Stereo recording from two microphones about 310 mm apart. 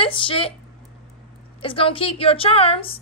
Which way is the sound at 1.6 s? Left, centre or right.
Centre.